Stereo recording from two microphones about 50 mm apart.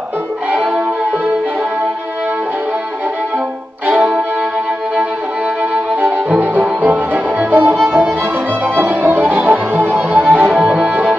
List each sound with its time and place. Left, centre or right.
3.9 s music: centre
5.9 s violin: right
6.8 s music: right
9.1 s music: right